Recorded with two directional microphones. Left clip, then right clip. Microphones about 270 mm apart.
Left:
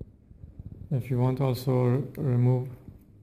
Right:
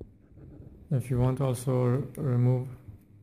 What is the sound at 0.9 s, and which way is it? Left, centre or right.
Speech, centre.